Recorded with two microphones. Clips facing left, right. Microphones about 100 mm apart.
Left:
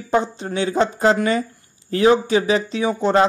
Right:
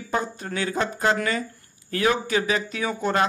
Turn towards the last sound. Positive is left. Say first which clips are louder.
# left 6 dB
turn(degrees=30)  # may be behind; listen again after turning